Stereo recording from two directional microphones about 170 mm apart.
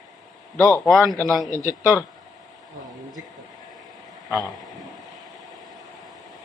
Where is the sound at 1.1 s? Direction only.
20° right (ahead or behind).